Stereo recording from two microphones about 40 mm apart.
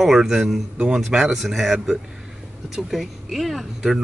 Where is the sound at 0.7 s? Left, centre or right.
Centre.